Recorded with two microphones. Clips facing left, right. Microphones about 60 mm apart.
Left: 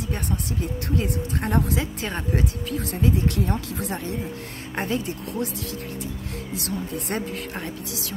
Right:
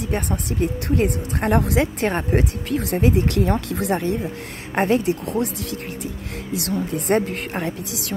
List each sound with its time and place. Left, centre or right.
0.0 s speech: right
4.7 s speech: right
5.4 s speech: right